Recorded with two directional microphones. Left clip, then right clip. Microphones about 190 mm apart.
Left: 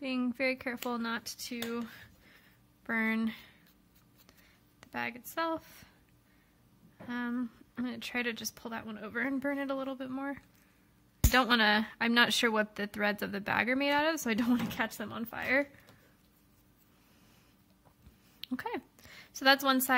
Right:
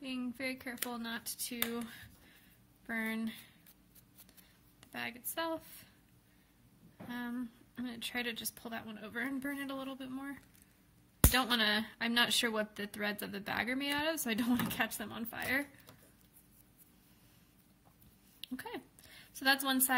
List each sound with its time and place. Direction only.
0.0 s speech: 40° left (ahead or behind)
4.7 s speech: 35° left (ahead or behind)
7.1 s speech: 35° left (ahead or behind)
18.4 s a woman's voice: 35° left (ahead or behind)